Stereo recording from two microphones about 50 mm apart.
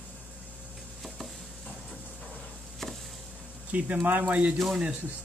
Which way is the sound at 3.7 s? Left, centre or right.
Right.